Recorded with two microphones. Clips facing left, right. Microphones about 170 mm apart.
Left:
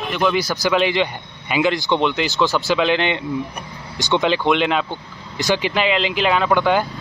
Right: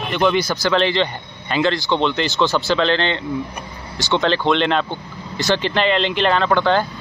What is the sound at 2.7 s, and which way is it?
Speech, 10° left (ahead or behind).